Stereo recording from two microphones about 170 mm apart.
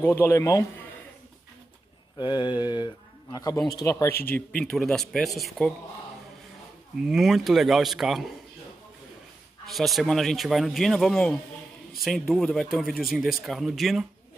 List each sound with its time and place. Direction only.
0.0 s a man's voice: 15° left (ahead or behind)
2.1 s a man's voice: 25° left (ahead or behind)
4.6 s speech: 5° left (ahead or behind)
7.0 s speech: centre (ahead or behind)
9.7 s speech: centre (ahead or behind)